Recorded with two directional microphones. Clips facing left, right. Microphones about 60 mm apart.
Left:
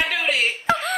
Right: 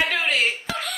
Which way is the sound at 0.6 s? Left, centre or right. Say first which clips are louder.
Left 8 dB; left.